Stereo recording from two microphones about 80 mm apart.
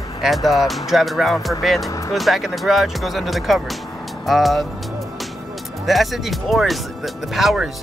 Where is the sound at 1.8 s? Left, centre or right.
Left.